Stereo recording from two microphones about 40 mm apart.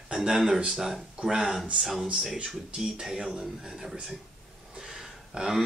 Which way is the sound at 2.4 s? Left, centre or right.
Centre.